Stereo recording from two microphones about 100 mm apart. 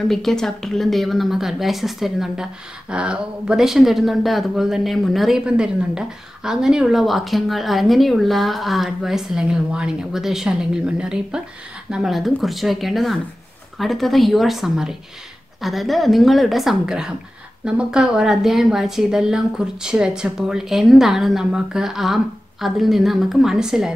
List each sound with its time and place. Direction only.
0.1 s speech: 5° left (ahead or behind)